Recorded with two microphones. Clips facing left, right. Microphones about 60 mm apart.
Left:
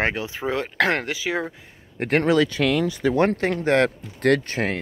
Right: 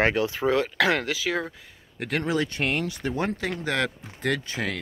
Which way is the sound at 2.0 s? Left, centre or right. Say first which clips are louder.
Left 7 dB; left.